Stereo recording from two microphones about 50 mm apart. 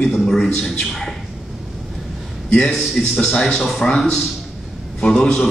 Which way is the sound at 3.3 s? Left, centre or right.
Centre.